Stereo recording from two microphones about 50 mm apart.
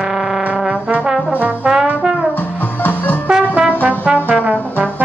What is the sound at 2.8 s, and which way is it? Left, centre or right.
Music, left.